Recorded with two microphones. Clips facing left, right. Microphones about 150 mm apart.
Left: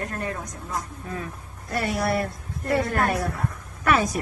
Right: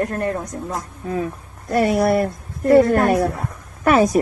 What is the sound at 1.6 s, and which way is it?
A woman's voice, 40° right (ahead or behind).